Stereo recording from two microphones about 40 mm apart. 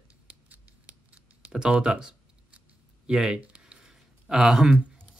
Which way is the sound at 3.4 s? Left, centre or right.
Right.